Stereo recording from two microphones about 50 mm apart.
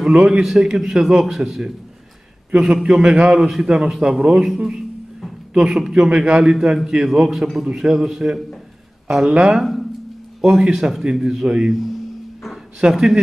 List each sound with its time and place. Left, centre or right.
0.0 s a man's voice: centre
12.8 s a man's voice: centre